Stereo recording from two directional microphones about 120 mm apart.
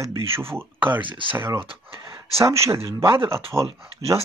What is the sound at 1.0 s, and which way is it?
Speech, 45° right (ahead or behind).